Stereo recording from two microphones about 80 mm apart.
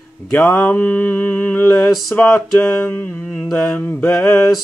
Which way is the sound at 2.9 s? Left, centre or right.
Left.